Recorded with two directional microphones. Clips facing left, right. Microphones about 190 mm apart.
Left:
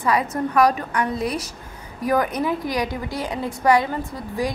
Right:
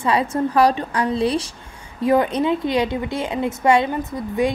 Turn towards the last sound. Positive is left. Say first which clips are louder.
# right 5 dB
turn(degrees=-25)  # may be behind; listen again after turning